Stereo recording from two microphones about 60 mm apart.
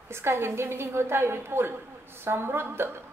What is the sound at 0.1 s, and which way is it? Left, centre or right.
A woman's voice, right.